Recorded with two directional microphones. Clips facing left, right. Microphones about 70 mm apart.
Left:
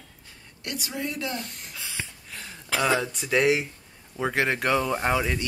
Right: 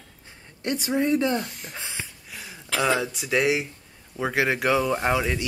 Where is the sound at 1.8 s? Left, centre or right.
Right.